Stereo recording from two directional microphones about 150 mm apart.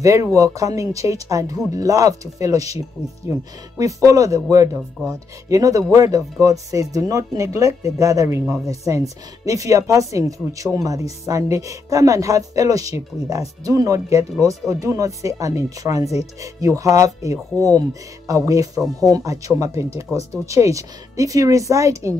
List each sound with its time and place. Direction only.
0.0 s speech: 20° right (ahead or behind)